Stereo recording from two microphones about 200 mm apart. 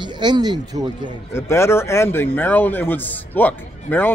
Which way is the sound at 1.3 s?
15° left (ahead or behind).